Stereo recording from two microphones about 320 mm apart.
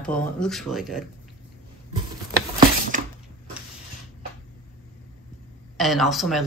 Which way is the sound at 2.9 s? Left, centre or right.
Right.